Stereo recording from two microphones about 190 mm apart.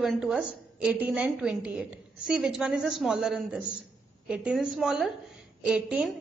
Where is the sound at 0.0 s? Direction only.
5° right (ahead or behind).